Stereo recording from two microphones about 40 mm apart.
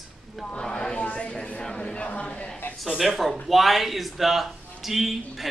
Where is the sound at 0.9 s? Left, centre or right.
Left.